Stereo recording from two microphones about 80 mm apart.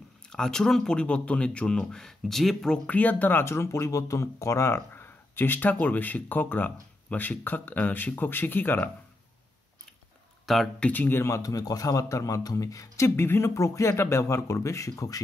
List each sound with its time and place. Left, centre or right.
0.3 s speech: centre
2.9 s speech: centre
10.4 s speech: centre
10.8 s a man's voice: left